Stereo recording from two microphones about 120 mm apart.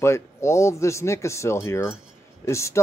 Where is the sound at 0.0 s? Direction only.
25° left (ahead or behind).